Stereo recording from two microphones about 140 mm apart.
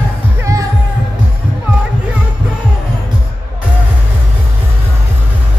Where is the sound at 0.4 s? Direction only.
25° right (ahead or behind).